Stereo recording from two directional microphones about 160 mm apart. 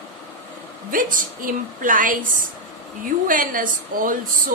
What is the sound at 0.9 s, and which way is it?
A woman's voice, 60° right (ahead or behind).